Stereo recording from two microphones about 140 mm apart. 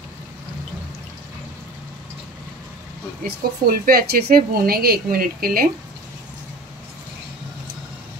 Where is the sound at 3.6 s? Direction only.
90° right.